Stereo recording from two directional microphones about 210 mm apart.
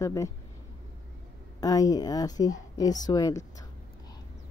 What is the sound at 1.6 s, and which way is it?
Speech, 15° left (ahead or behind).